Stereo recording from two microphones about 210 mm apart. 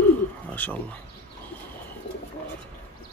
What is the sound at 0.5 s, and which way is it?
Speech, 10° left (ahead or behind).